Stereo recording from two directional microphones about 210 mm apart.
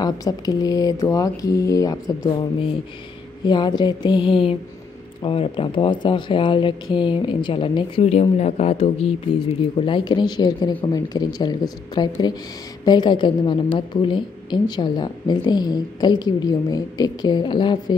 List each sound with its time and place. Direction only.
0.0 s speech: 20° left (ahead or behind)